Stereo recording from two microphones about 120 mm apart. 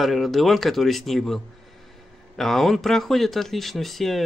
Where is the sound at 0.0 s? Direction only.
Centre (ahead or behind).